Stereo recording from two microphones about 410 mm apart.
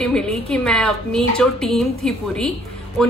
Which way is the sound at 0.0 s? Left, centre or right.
Centre.